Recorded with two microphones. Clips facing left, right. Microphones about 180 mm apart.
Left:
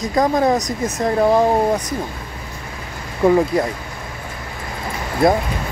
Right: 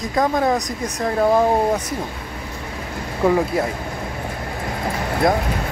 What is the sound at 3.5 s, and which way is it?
Speech, 5° right (ahead or behind).